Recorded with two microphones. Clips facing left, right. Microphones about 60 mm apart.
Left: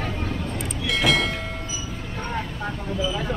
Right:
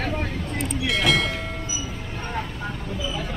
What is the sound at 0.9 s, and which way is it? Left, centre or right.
Train, centre.